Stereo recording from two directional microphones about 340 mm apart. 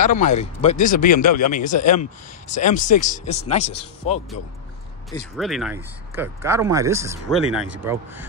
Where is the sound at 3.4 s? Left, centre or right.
Left.